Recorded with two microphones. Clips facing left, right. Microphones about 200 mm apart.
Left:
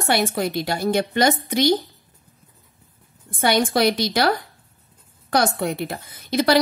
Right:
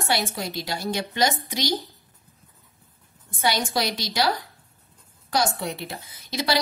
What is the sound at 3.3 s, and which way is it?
Speech, 55° left (ahead or behind).